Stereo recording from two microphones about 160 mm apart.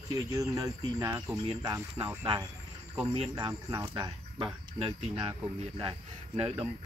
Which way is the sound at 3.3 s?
25° right (ahead or behind).